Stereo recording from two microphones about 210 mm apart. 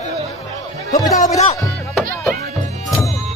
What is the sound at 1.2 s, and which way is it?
Speech, 35° left (ahead or behind).